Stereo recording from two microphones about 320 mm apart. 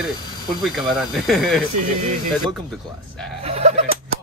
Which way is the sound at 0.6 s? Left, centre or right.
Centre.